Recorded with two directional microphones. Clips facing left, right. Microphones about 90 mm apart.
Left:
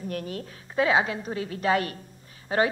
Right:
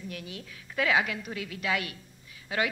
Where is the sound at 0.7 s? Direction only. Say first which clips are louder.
Left 4 dB; 30° left (ahead or behind).